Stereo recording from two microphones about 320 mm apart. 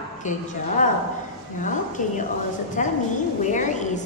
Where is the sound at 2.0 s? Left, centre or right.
Left.